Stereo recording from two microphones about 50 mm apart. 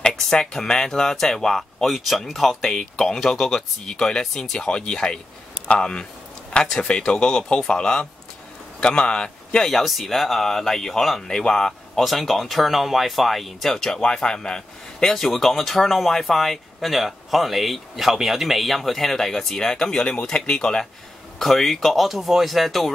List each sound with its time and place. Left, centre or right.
0.1 s a man's voice: centre
9.7 s speech: centre
21.4 s speech: centre